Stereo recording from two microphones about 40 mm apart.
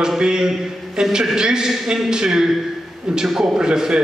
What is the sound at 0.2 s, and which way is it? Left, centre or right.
A man's voice, centre.